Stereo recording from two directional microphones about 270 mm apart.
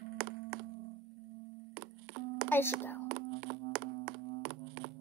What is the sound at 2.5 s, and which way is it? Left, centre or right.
Speech, centre.